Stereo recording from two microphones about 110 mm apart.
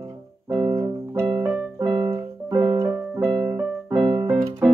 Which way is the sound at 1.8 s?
25° right (ahead or behind).